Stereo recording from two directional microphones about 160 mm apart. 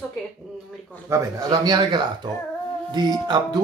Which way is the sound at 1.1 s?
20° right (ahead or behind).